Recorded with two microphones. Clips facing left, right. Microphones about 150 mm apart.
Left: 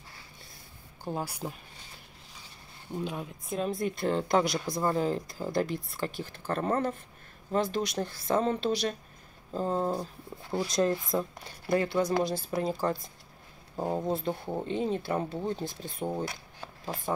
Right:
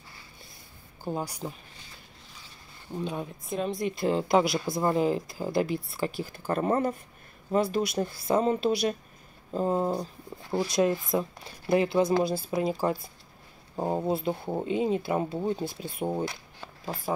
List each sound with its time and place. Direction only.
1.0 s speech: 5° left (ahead or behind)
2.9 s speech: centre (ahead or behind)
11.7 s speech: 15° right (ahead or behind)